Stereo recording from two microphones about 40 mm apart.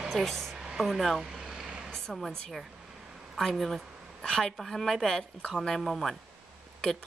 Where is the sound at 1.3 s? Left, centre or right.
Centre.